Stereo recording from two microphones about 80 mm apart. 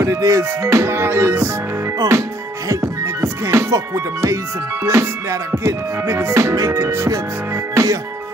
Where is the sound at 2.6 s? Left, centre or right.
Right.